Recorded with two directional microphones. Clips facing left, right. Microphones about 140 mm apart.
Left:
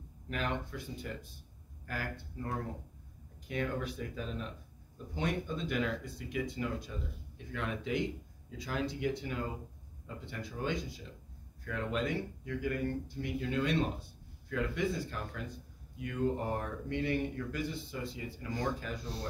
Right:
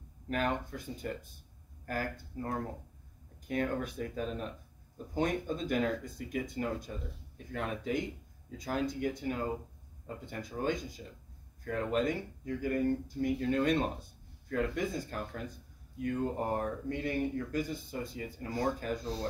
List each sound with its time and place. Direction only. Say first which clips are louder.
0.3 s speech: right 4 dB; 45° right (ahead or behind)